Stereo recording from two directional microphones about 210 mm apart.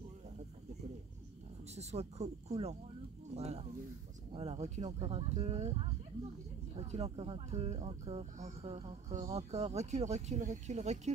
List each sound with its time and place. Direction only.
1.8 s speech: 30° right (ahead or behind)